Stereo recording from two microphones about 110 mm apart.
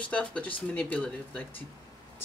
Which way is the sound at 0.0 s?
10° left (ahead or behind).